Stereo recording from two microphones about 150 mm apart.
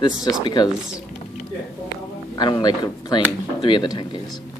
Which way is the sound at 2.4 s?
30° left (ahead or behind).